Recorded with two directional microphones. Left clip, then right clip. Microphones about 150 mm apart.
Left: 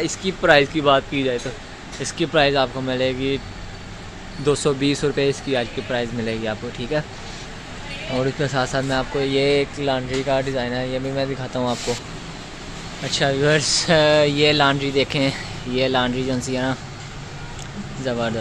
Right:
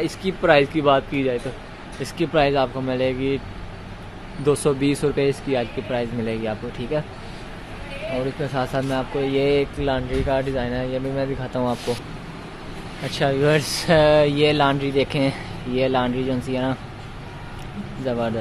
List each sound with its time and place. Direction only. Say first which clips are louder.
0.0 s speech: left 1 dB; 5° right (ahead or behind)
4.5 s speech: even; 5° right (ahead or behind)
8.5 s speech: left 1 dB; centre (ahead or behind)
13.0 s speech: left 1 dB; 10° right (ahead or behind)
18.0 s speech: left 1 dB; 5° right (ahead or behind)